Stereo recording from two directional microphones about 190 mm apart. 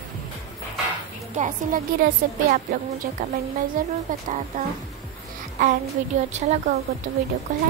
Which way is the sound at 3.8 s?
45° right (ahead or behind).